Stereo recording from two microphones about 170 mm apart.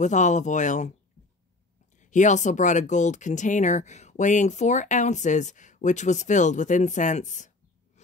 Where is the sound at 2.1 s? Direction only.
45° left (ahead or behind).